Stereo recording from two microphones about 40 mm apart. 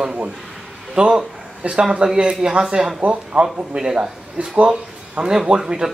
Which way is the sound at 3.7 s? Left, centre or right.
Centre.